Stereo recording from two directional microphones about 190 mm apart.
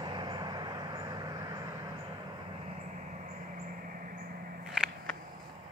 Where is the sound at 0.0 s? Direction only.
25° right (ahead or behind).